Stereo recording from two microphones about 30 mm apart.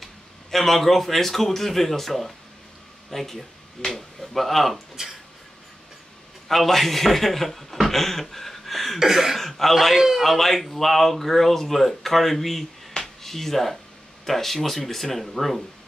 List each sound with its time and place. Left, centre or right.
0.0 s a man's voice: centre
3.8 s speech: centre
4.2 s a man's voice: centre
5.0 s speech: right
6.5 s a man's voice: centre
9.0 s a sound: centre
9.4 s speech: centre
9.9 s a sound: centre
10.2 s speech: centre
13.0 s a sound: centre
14.2 s a man's voice: centre